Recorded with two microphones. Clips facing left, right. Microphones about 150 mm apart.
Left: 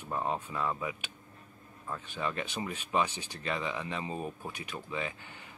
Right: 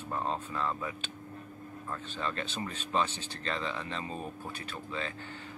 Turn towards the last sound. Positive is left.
turn(degrees=15)  # may be behind; listen again after turning